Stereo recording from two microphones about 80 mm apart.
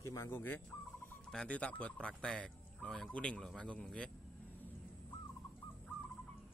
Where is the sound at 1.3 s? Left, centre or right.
Centre.